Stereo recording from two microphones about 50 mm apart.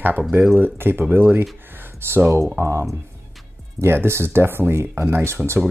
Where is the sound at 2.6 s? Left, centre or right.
Right.